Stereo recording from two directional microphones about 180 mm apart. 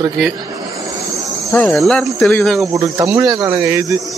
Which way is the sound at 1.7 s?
Centre (ahead or behind).